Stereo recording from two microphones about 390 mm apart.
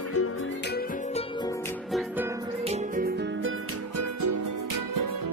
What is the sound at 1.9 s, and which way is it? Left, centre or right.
Music, centre.